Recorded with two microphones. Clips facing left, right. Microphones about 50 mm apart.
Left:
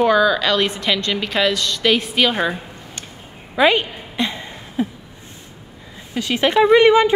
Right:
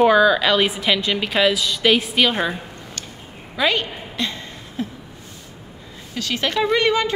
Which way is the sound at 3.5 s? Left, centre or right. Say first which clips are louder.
Left 5 dB; centre.